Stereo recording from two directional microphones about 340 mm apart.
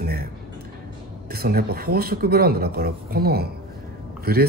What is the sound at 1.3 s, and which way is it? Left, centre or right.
Speech, right.